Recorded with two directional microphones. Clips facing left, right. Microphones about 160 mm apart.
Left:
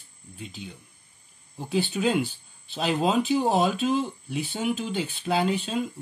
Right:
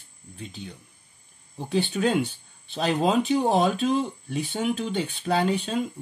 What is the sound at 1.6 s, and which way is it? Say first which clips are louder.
Speech: right 1 dB; centre (ahead or behind).